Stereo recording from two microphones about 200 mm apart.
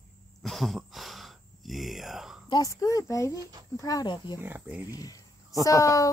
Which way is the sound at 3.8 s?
20° left (ahead or behind).